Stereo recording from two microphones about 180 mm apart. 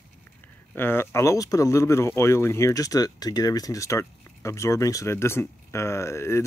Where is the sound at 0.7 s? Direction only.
10° left (ahead or behind).